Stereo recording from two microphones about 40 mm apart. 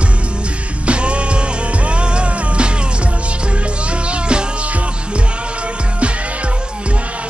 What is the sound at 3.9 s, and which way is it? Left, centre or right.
Music, right.